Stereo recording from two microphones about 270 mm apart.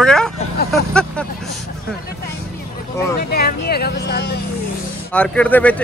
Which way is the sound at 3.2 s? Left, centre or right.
Left.